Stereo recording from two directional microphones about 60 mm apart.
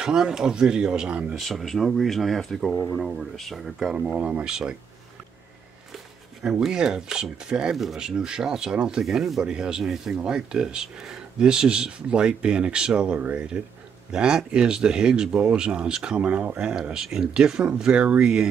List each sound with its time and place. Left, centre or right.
0.0 s speech: centre
1.4 s speech: centre
4.2 s speech: right
6.4 s speech: centre